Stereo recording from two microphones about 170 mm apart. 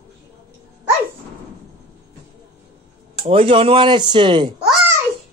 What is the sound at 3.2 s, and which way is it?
Speech, 35° right (ahead or behind).